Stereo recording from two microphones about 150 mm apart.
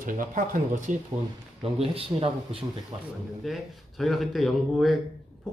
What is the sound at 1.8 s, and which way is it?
A man's voice, 40° right (ahead or behind).